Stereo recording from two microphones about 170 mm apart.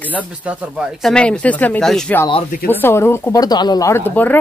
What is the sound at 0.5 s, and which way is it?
A woman's voice, centre (ahead or behind).